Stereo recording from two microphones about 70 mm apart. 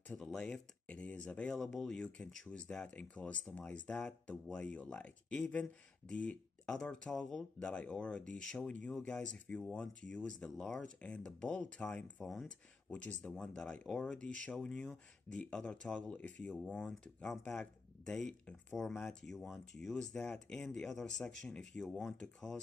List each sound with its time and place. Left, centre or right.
0.2 s speech: centre
1.6 s speech: centre
8.6 s speech: centre